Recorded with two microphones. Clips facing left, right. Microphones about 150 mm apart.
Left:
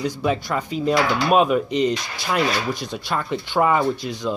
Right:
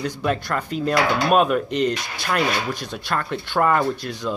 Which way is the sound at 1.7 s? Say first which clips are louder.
Left 1 dB; 60° right (ahead or behind).